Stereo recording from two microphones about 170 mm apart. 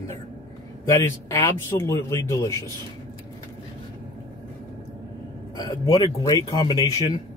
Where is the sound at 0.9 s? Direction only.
15° left (ahead or behind).